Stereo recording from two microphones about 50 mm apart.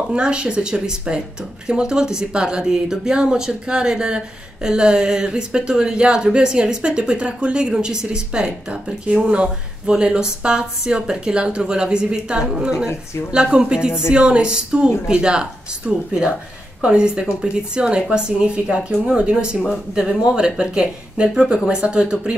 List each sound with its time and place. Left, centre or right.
0.1 s speech: centre